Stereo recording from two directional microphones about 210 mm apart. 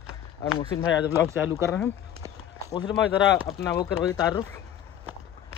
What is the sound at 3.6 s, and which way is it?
Speech, 15° left (ahead or behind).